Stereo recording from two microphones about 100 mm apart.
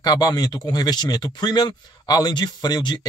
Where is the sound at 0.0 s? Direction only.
40° left (ahead or behind).